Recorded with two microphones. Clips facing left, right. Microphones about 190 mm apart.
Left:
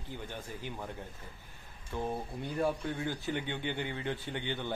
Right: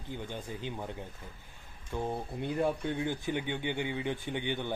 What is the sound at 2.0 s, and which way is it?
Speech, 20° right (ahead or behind).